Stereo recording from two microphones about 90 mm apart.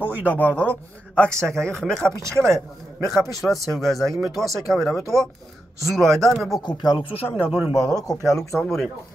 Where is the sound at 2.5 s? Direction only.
35° right (ahead or behind).